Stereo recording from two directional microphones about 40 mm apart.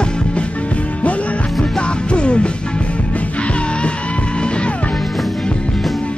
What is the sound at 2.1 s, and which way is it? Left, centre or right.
Music, left.